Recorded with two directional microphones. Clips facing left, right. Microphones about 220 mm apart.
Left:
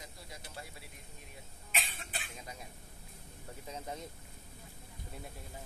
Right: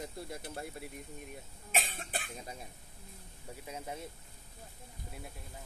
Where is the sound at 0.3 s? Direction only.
55° right (ahead or behind).